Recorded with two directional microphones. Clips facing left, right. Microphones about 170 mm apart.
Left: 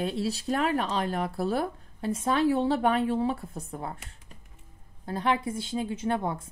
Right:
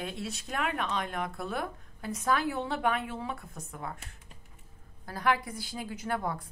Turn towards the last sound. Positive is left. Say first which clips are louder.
# left 4 dB
turn(degrees=25)  # may be behind; listen again after turning